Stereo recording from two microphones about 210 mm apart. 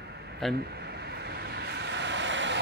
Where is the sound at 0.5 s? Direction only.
50° right (ahead or behind).